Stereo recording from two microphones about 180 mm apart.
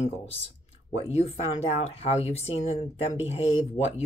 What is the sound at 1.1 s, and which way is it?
Speech, 35° left (ahead or behind).